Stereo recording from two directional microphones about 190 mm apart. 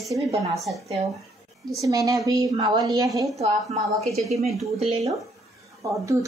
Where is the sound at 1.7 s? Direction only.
15° right (ahead or behind).